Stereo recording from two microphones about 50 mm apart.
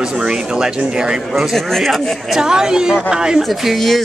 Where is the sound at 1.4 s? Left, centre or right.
Centre.